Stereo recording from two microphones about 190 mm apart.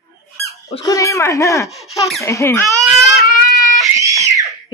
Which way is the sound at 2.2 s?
15° left (ahead or behind).